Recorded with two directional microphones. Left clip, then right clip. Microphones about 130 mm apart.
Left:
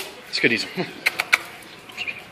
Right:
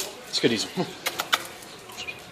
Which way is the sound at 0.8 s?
15° right (ahead or behind).